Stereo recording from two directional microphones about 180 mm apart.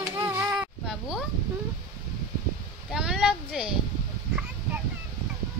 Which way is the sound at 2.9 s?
5° right (ahead or behind).